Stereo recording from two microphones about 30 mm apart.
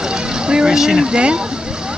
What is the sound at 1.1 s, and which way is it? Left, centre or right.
Speech, right.